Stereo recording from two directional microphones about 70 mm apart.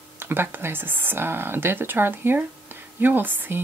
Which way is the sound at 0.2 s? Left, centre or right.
Right.